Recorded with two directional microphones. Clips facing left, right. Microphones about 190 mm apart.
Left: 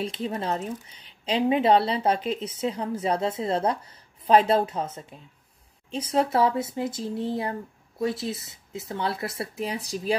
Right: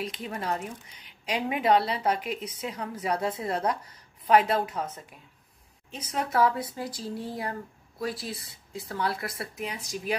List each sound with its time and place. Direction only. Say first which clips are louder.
0.0 s a woman's voice: left 4 dB; 30° left (ahead or behind)